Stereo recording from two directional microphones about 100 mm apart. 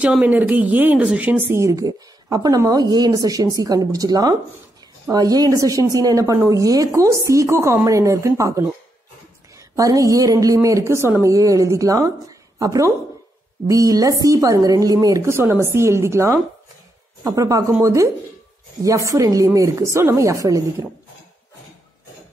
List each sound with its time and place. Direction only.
0.0 s speech: 10° right (ahead or behind); by 15.2 s 35° right (ahead or behind)
15.2 s a woman's voice: 25° right (ahead or behind)